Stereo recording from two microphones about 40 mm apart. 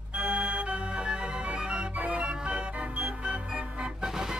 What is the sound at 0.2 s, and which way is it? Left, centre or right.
Organ, right.